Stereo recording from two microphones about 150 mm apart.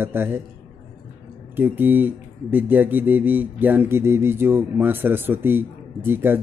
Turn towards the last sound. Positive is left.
turn(degrees=-15)  # may be behind; listen again after turning